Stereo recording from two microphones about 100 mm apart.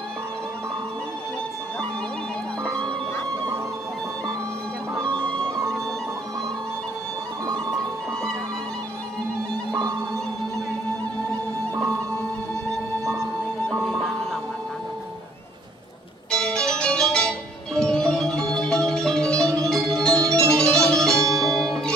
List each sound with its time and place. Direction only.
9.8 s music: 30° right (ahead or behind)
13.8 s music: centre (ahead or behind)
16.3 s music: 10° left (ahead or behind)